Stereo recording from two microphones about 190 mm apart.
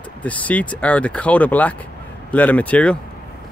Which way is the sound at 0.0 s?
10° left (ahead or behind).